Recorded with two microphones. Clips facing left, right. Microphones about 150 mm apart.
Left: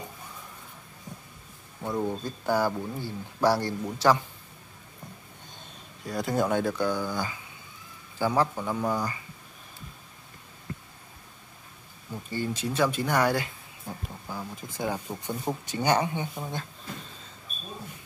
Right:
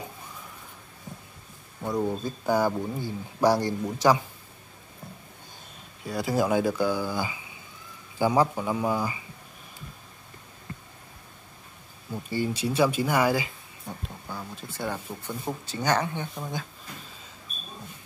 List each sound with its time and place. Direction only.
1.8 s speech: centre (ahead or behind)
2.2 s speech: 15° right (ahead or behind)
6.0 s speech: centre (ahead or behind)
12.1 s speech: 10° right (ahead or behind)
14.5 s speech: 15° left (ahead or behind)
16.3 s speech: centre (ahead or behind)